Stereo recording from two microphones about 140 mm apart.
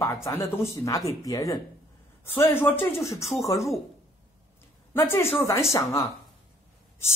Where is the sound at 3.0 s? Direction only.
20° left (ahead or behind).